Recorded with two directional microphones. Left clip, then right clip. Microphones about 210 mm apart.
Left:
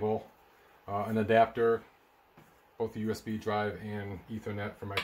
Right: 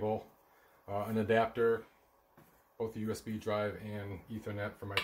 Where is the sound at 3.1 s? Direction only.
25° left (ahead or behind).